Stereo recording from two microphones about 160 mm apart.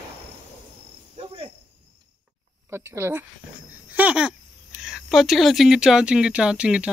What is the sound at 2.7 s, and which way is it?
Speech, 15° right (ahead or behind).